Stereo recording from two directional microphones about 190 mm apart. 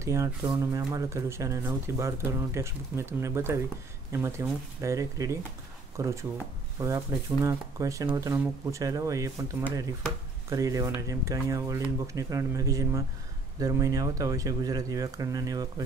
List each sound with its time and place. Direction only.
0.0 s speech: 15° right (ahead or behind)